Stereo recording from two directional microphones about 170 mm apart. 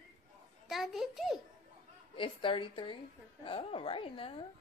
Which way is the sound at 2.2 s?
30° left (ahead or behind).